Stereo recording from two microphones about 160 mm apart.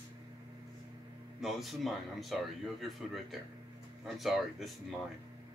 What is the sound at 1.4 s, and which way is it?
Speech, centre (ahead or behind).